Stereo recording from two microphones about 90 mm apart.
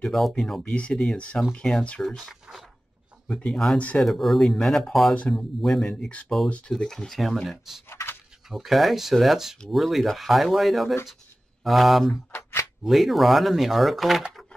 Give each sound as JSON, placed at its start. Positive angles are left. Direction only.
{"t": 0.0, "sound": "speech", "side_deg": 5}
{"t": 2.1, "sound": "speech", "side_deg": 0}
{"t": 3.7, "sound": "speech", "side_deg": 15}
{"t": 4.0, "sound": "speech", "side_deg": 0}
{"t": 7.9, "sound": "a sound", "side_deg": 30}
{"t": 8.5, "sound": "speech", "side_deg": 0}
{"t": 12.3, "sound": "a sound", "side_deg": 30}
{"t": 12.8, "sound": "speech", "side_deg": 0}